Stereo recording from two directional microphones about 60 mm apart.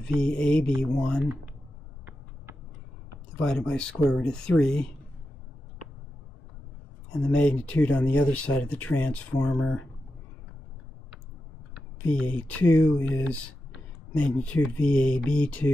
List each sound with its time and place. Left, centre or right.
0.2 s speech: centre
3.3 s speech: centre
7.1 s speech: centre
9.6 s speech: centre
12.1 s speech: left
14.1 s speech: left